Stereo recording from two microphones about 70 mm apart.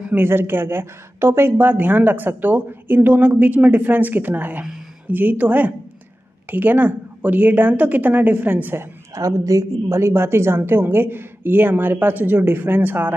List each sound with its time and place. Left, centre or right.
0.1 s a woman's voice: right
9.1 s a woman's voice: right